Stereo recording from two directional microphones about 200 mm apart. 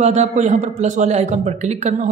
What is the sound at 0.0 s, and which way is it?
Speech, 35° right (ahead or behind).